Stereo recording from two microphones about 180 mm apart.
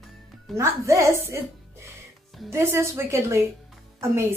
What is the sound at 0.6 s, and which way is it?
Speech, 15° right (ahead or behind).